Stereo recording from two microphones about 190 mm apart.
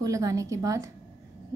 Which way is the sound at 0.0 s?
15° right (ahead or behind).